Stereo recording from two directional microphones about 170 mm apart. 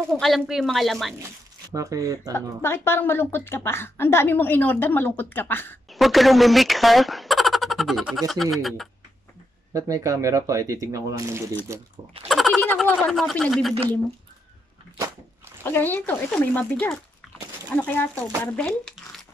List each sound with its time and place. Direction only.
0.2 s speech: centre (ahead or behind)
1.7 s speech: 20° right (ahead or behind)
2.3 s speech: 15° left (ahead or behind)
5.9 s speech: centre (ahead or behind)
9.8 s speech: 20° right (ahead or behind)
12.3 s a sound: centre (ahead or behind)
12.8 s speech: 5° left (ahead or behind)
15.6 s speech: 10° left (ahead or behind)